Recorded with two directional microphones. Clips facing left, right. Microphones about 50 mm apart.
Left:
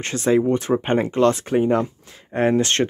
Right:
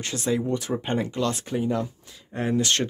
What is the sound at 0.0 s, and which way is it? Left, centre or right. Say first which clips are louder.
Speech: left 8 dB; left.